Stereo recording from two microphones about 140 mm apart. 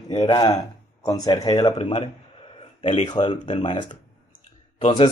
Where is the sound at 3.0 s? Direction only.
30° left (ahead or behind).